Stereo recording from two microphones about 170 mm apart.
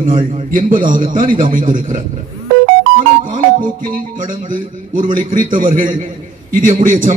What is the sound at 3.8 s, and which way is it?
A man's voice, 55° right (ahead or behind).